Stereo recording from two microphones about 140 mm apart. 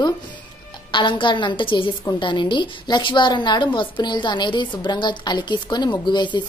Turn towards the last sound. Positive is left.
turn(degrees=35)  # may be behind; listen again after turning